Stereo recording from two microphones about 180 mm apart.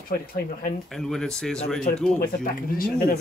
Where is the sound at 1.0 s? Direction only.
5° left (ahead or behind).